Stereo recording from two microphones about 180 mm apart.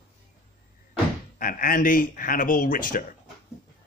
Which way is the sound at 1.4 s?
50° left (ahead or behind).